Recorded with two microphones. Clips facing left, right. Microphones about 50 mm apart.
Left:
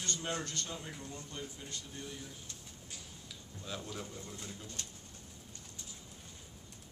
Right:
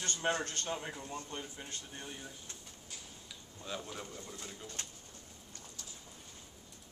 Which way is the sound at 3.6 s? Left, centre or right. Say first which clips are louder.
Right 1 dB; centre.